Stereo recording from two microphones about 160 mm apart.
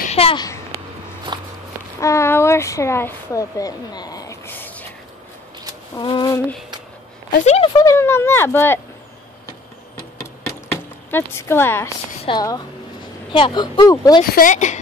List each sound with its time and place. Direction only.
0.1 s a sound: 40° left (ahead or behind)
1.3 s walk: 30° right (ahead or behind)
2.0 s a sound: 20° left (ahead or behind)
4.5 s a sound: 10° left (ahead or behind)
5.9 s speech: 30° left (ahead or behind)
7.4 s speech: 40° left (ahead or behind)
7.7 s speech: 20° left (ahead or behind)
11.1 s speech: 15° left (ahead or behind)
12.2 s a woman's voice: 30° left (ahead or behind)
14.3 s speech: 55° left (ahead or behind)